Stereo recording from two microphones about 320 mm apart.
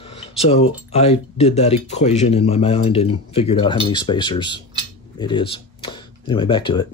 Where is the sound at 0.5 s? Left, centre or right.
Centre.